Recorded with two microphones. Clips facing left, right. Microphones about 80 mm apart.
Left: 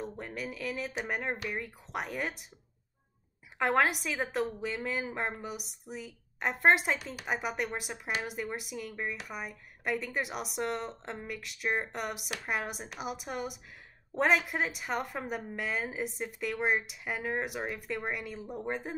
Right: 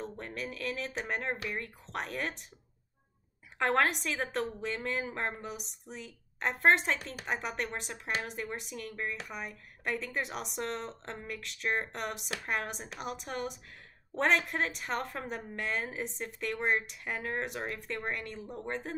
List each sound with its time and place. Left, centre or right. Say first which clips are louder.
0.0 s a woman's voice: left 1 dB; centre
3.5 s a woman's voice: left 1 dB; centre